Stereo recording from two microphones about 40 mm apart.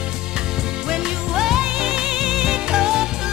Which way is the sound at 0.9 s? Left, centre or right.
Centre.